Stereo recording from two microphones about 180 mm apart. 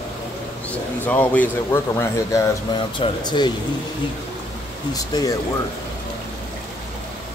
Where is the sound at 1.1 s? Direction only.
10° left (ahead or behind).